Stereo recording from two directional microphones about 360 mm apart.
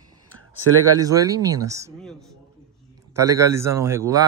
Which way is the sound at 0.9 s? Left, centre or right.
Centre.